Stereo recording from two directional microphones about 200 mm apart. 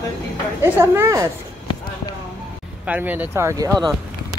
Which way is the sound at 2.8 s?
10° right (ahead or behind).